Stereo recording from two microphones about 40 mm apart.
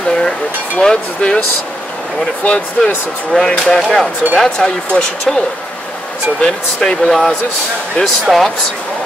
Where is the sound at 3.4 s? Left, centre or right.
Centre.